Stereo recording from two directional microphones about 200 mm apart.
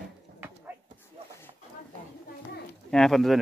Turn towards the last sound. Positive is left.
turn(degrees=0)  # may be behind; listen again after turning